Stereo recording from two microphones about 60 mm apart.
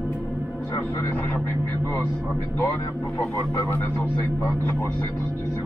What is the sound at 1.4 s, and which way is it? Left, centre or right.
Speech, left.